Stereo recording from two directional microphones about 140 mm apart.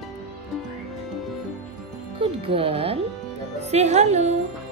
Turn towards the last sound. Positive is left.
turn(degrees=-55)  # may be behind; listen again after turning